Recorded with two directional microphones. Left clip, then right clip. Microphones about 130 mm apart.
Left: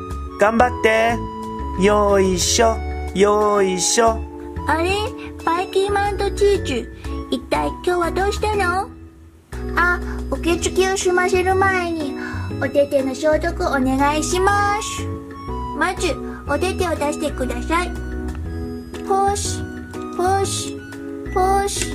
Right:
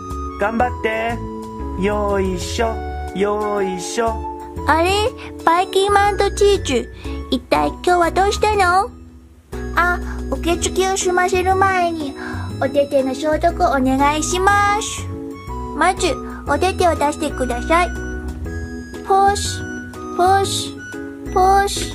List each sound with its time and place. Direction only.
0.4 s speech: 20° left (ahead or behind)
4.6 s speech: 35° right (ahead or behind)
10.4 s a child's voice: 15° right (ahead or behind)
13.1 s a child's voice: 25° right (ahead or behind)
19.0 s music: 20° right (ahead or behind)
20.2 s a child's voice: 20° right (ahead or behind)